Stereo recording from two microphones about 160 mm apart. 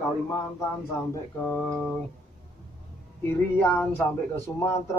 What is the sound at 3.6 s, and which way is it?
Speech, 10° left (ahead or behind).